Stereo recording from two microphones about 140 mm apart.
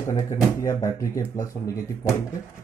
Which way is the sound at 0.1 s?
25° left (ahead or behind).